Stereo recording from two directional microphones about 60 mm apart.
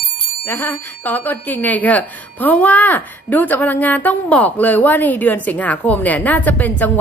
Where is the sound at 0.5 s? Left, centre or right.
Left.